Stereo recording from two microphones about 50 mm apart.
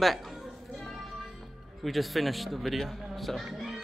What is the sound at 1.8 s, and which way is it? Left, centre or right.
Speech, centre.